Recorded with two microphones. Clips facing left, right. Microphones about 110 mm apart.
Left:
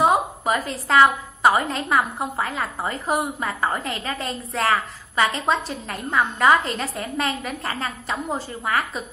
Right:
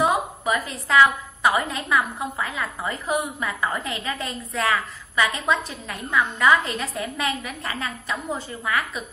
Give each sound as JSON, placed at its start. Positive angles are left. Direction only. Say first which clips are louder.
{"t": 0.0, "sound": "a woman's voice", "louder": "left 3 dB", "side_deg": 35}